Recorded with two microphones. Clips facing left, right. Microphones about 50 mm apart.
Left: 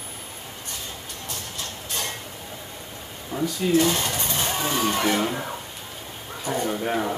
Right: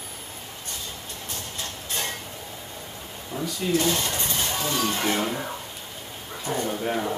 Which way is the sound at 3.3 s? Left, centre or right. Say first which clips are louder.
Left 5 dB; centre.